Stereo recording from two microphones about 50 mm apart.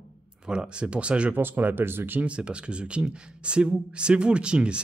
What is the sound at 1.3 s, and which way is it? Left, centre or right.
Speech, right.